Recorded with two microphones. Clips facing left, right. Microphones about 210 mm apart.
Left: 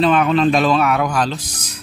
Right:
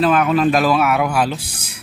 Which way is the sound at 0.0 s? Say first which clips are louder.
Even; 5° right (ahead or behind).